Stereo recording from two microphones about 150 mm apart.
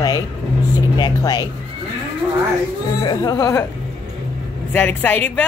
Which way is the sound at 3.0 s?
25° left (ahead or behind).